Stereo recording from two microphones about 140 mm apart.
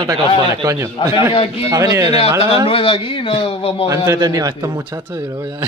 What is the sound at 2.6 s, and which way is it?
A man's voice, 40° left (ahead or behind).